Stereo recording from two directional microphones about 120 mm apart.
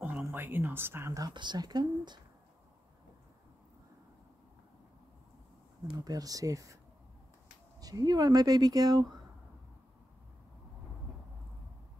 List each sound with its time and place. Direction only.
0.3 s speech: 20° right (ahead or behind); by 2.1 s 35° right (ahead or behind)
5.9 s speech: 30° right (ahead or behind)
7.8 s speech: 35° right (ahead or behind)